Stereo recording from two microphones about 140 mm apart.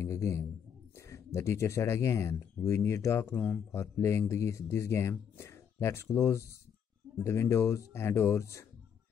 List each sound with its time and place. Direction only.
0.0 s a man's voice: 20° left (ahead or behind)